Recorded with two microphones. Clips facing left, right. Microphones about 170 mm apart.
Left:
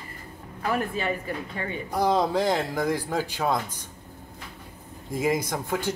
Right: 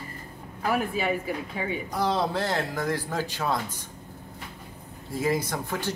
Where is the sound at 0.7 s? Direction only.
5° right (ahead or behind).